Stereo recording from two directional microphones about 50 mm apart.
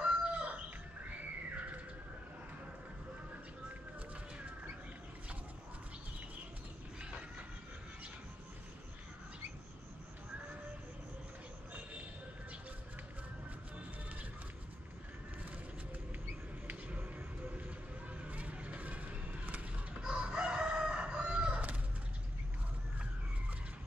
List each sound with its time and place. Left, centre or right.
0.0 s chicken: right
1.5 s bird: right
17.6 s vehicle: right
20.0 s crowing: centre